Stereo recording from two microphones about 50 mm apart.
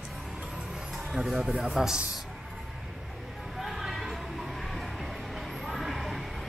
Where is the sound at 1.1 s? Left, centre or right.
Centre.